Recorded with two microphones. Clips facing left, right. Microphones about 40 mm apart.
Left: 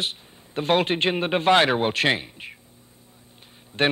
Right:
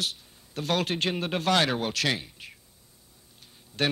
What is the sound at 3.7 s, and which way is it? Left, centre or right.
Speech, left.